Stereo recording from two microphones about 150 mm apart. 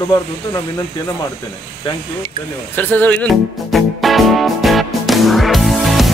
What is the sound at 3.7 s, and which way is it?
Music, centre (ahead or behind).